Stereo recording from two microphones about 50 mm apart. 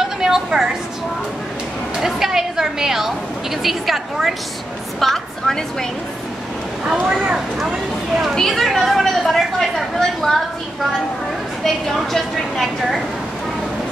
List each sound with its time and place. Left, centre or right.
0.2 s a sound: centre
2.0 s a woman's voice: centre
5.0 s a woman's voice: centre
6.9 s speech: centre
8.4 s speech: centre